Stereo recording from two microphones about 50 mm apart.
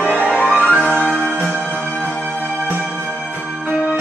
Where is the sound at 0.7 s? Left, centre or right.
Left.